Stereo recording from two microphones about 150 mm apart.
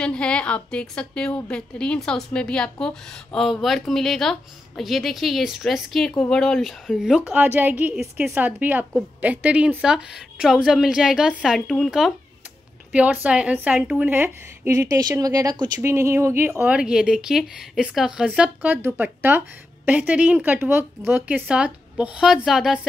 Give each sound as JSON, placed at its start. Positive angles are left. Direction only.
{"t": 0.0, "sound": "a woman's voice", "side_deg": 5}
{"t": 12.9, "sound": "a woman's voice", "side_deg": -10}